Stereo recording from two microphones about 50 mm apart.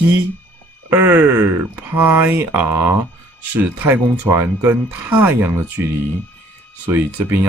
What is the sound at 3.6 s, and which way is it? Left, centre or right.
Speech, right.